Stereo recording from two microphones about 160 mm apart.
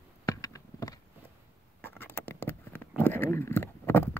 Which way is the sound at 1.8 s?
10° left (ahead or behind).